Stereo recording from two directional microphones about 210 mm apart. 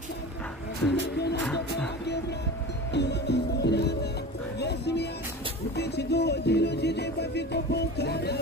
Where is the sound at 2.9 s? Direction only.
55° left (ahead or behind).